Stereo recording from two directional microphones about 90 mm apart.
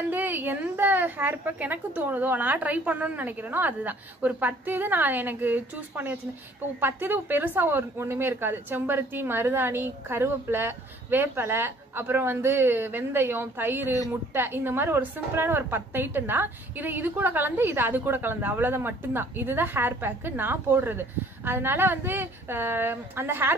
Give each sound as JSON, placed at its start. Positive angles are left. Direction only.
{"t": 0.1, "sound": "a woman's voice", "side_deg": -20}